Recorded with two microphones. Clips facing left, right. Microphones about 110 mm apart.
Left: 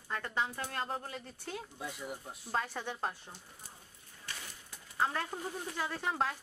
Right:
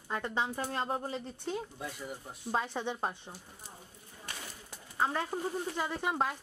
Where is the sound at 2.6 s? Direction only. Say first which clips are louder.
Right 4 dB; 20° right (ahead or behind).